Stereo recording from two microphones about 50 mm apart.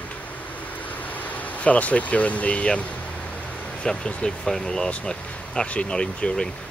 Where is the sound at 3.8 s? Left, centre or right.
Centre.